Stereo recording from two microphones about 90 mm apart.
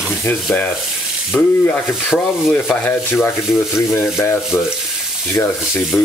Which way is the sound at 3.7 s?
25° left (ahead or behind).